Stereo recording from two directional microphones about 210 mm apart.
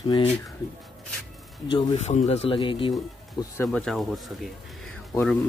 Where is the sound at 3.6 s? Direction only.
Centre (ahead or behind).